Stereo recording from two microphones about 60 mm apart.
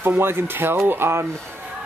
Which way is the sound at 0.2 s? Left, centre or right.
Right.